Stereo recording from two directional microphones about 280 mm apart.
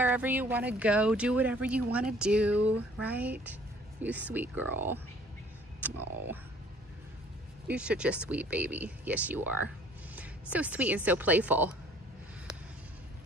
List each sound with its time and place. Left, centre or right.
0.0 s speech: centre
7.6 s speech: centre